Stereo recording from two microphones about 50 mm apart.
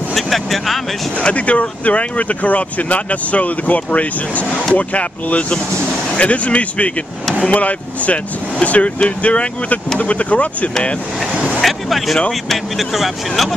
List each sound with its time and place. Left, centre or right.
0.1 s speech: centre
1.2 s speech: left
11.3 s vehicle: right
11.6 s speech: centre